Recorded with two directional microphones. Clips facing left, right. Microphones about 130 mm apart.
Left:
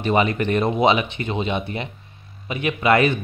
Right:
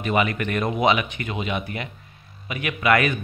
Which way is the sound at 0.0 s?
30° left (ahead or behind).